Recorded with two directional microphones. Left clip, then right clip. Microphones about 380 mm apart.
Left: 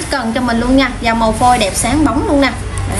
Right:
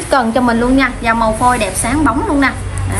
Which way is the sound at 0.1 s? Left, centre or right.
Centre.